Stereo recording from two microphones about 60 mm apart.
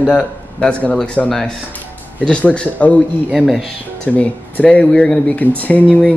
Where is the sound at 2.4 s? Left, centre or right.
Left.